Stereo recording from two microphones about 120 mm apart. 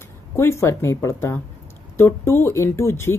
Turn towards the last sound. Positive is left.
turn(degrees=20)  # may be behind; listen again after turning